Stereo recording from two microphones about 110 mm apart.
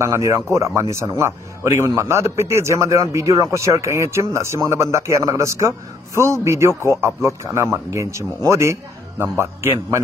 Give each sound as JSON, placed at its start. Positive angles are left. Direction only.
{"t": 0.0, "sound": "a man's voice", "side_deg": -25}